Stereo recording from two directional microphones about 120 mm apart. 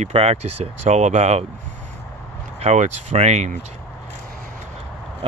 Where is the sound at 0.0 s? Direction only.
65° right (ahead or behind).